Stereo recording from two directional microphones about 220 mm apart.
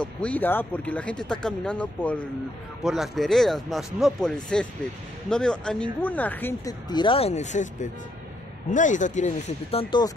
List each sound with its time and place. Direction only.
0.2 s speech: 5° left (ahead or behind)